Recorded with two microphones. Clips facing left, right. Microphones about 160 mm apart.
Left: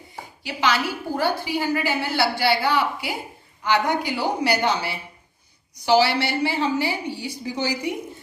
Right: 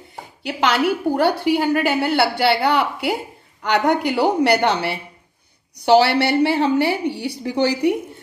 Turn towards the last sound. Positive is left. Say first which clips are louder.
# right 8 dB
turn(degrees=-60)  # may be behind; listen again after turning